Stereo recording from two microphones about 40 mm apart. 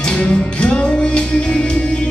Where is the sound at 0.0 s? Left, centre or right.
Left.